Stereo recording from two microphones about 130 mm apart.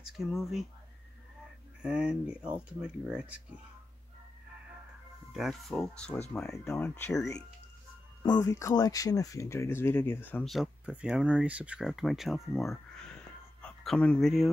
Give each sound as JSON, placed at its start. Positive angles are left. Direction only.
{"t": 0.0, "sound": "speech", "side_deg": -5}
{"t": 1.8, "sound": "speech", "side_deg": -5}
{"t": 5.3, "sound": "speech", "side_deg": 0}
{"t": 6.8, "sound": "speech", "side_deg": 15}
{"t": 8.2, "sound": "speech", "side_deg": 25}
{"t": 10.4, "sound": "speech", "side_deg": 0}